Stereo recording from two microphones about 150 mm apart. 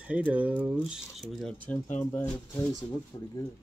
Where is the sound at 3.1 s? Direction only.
25° left (ahead or behind).